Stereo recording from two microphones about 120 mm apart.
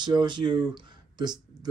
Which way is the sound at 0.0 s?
40° right (ahead or behind).